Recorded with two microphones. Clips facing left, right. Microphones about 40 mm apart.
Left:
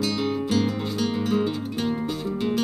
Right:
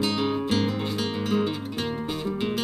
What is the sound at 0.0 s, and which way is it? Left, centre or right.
Music, centre.